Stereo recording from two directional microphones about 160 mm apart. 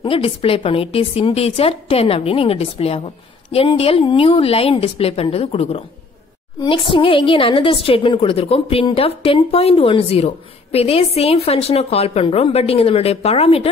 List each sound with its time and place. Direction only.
0.0 s a woman's voice: 35° left (ahead or behind)